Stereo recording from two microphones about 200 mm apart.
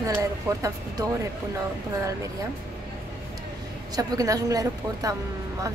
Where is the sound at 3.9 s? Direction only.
20° right (ahead or behind).